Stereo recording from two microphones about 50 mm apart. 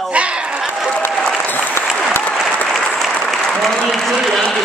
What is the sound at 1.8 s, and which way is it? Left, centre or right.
Applause, left.